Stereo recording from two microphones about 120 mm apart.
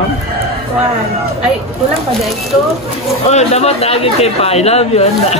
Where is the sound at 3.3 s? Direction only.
65° left (ahead or behind).